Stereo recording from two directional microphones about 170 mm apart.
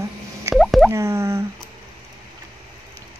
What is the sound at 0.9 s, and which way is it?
Plop, 15° right (ahead or behind).